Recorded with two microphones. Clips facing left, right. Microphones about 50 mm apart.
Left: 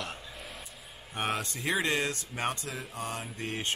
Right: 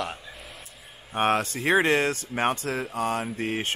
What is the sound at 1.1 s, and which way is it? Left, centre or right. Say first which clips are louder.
Speech: right 9 dB; right.